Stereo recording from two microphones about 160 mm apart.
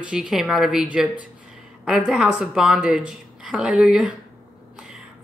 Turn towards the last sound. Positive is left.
turn(degrees=-5)  # may be behind; listen again after turning